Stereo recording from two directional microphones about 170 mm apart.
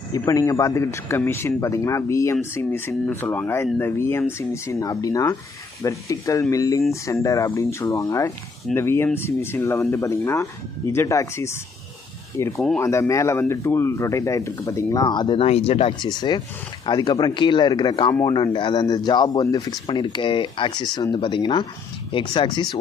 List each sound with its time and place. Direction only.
0.2 s speech: 20° left (ahead or behind); by 16.1 s 35° left (ahead or behind)
16.2 s speech: 25° left (ahead or behind)